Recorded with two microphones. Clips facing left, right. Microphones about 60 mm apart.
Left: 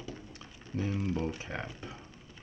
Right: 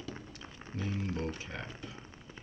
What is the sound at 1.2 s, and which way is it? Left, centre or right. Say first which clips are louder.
Speech: left 2 dB; centre.